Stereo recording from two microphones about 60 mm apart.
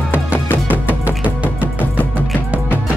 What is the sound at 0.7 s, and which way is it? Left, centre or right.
Music, right.